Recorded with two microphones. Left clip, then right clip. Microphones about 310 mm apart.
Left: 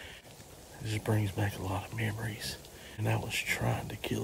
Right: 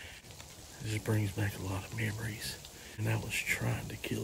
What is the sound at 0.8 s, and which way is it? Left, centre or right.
Speech, centre.